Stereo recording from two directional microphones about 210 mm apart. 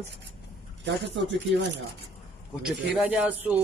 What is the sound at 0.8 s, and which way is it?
Speech, 60° right (ahead or behind).